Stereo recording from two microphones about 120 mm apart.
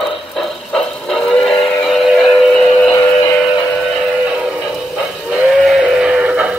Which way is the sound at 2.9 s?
30° left (ahead or behind).